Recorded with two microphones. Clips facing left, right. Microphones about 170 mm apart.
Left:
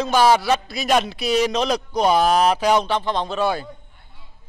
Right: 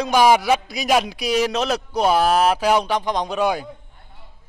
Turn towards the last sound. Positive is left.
turn(degrees=-15)  # may be behind; listen again after turning